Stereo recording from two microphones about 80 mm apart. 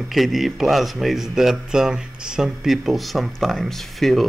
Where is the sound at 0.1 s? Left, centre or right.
Centre.